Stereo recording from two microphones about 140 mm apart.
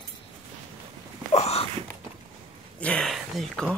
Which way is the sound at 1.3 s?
50° left (ahead or behind).